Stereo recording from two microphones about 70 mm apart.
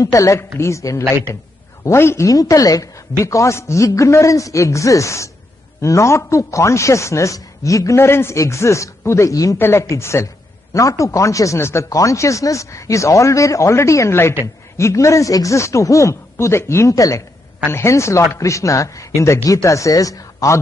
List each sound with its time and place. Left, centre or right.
0.0 s speech: left
2.2 s speech: left
9.3 s speech: left
9.6 s speech: left
17.6 s speech: left